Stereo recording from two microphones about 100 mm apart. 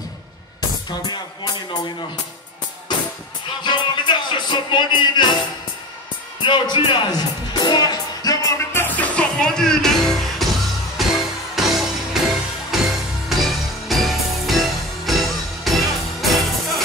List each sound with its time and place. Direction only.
0.8 s music: 40° left (ahead or behind)
3.6 s music: 50° left (ahead or behind)
6.4 s music: 50° left (ahead or behind)
8.7 s music: 15° left (ahead or behind); by 16.8 s centre (ahead or behind)